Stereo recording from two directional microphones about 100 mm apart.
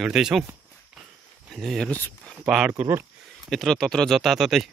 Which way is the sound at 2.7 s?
20° right (ahead or behind).